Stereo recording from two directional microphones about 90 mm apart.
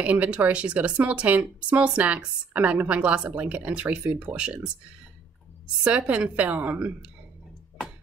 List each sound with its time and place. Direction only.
0.0 s speech: 15° right (ahead or behind)
5.9 s speech: 15° right (ahead or behind)